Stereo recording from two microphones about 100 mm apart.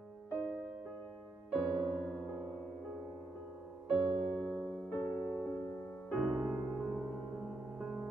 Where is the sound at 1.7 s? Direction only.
5° left (ahead or behind).